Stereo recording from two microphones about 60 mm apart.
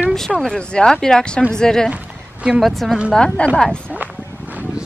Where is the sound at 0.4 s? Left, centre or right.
Centre.